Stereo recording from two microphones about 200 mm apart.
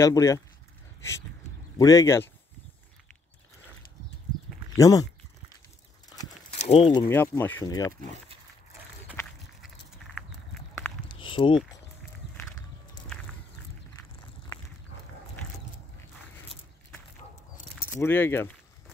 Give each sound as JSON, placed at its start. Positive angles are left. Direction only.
{"t": 0.0, "sound": "speech", "side_deg": 15}
{"t": 1.8, "sound": "speech", "side_deg": 15}
{"t": 4.7, "sound": "speech", "side_deg": 15}
{"t": 6.5, "sound": "speech", "side_deg": 30}
{"t": 7.1, "sound": "speech", "side_deg": 10}
{"t": 11.1, "sound": "walk", "side_deg": 25}
{"t": 17.9, "sound": "speech", "side_deg": 10}